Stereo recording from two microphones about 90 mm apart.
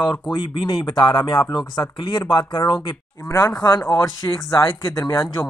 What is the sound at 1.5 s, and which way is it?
Speech, 40° left (ahead or behind).